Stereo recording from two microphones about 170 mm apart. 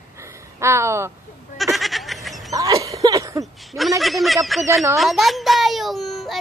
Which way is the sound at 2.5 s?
20° right (ahead or behind).